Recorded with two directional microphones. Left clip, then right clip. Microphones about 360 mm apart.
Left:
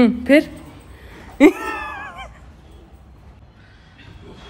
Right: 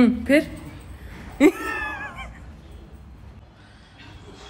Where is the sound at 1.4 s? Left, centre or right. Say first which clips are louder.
Left 4 dB; centre.